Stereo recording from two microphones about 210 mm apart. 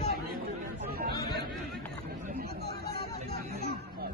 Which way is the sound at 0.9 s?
45° right (ahead or behind).